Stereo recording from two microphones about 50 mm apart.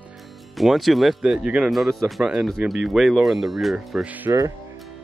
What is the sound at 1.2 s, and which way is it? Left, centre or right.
Speech, centre.